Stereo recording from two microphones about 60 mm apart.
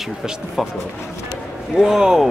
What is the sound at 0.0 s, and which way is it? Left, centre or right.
Speech, centre.